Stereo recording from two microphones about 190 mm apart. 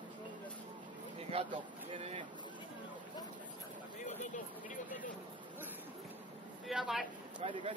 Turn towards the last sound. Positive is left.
turn(degrees=-30)  # may be behind; listen again after turning